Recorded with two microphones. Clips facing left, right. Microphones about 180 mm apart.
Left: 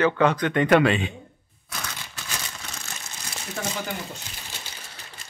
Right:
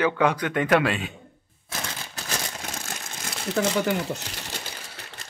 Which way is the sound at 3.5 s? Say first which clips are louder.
Right 8 dB; 75° right (ahead or behind).